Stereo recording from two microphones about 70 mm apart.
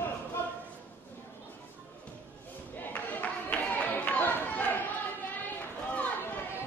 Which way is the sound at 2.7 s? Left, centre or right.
Left.